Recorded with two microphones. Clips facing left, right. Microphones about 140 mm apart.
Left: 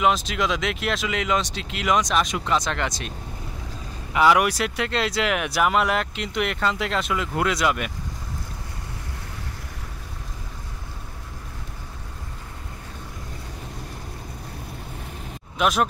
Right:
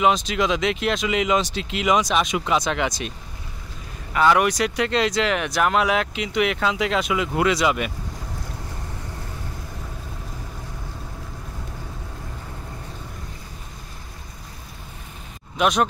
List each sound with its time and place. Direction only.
0.0 s speech: centre (ahead or behind)
4.1 s speech: 10° left (ahead or behind)
15.5 s speech: centre (ahead or behind)